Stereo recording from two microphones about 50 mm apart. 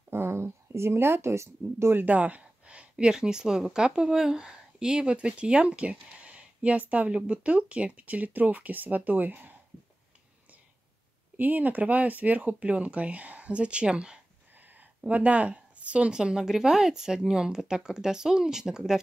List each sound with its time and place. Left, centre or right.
0.1 s speech: right
2.0 s speech: right
11.3 s speech: right; by 14.2 s centre
14.5 s a woman's voice: right; by 18.9 s centre